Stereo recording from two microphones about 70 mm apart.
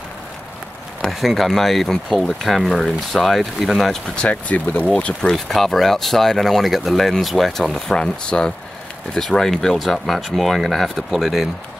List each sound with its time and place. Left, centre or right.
1.0 s speech: centre
4.2 s speech: centre
5.3 s speech: centre